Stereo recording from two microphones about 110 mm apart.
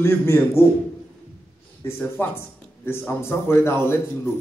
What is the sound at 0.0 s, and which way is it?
Speech, 20° left (ahead or behind).